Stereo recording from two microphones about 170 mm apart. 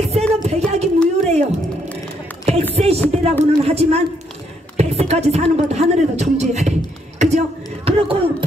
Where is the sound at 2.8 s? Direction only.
35° right (ahead or behind).